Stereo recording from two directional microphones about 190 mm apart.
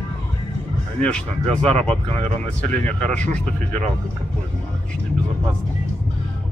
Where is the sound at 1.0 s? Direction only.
5° left (ahead or behind).